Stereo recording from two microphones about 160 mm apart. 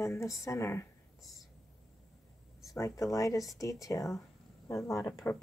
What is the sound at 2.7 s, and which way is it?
Speech, 20° left (ahead or behind).